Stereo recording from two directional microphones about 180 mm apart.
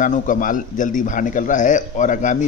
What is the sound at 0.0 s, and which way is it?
A man's voice, 45° left (ahead or behind).